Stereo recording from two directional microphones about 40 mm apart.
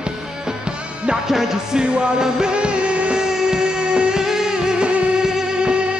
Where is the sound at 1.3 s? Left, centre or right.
Centre; by 3.2 s right.